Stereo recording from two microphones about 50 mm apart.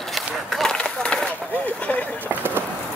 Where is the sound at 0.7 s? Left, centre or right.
Centre.